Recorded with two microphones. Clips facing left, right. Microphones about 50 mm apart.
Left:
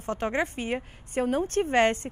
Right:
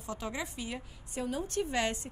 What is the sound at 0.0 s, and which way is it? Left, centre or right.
A woman's voice, left.